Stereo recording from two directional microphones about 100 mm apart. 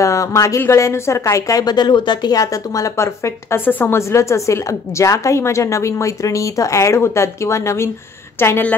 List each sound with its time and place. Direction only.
0.0 s a woman's voice: 30° left (ahead or behind)